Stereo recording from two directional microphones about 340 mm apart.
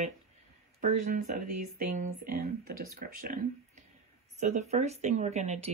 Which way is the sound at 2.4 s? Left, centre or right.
Right.